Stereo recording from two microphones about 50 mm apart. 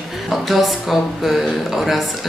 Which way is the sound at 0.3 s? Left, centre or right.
Centre.